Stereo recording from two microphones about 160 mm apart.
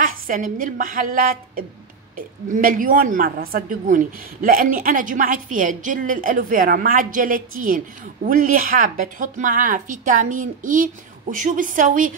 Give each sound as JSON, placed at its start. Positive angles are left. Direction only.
{"t": 0.0, "sound": "a woman's voice", "side_deg": -60}